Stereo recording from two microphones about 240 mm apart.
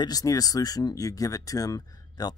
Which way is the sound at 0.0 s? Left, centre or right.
Centre.